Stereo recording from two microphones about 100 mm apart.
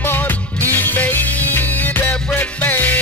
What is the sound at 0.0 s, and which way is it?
Music, 20° left (ahead or behind).